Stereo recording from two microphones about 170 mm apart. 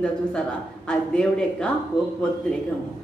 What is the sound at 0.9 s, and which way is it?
Speech, 5° left (ahead or behind).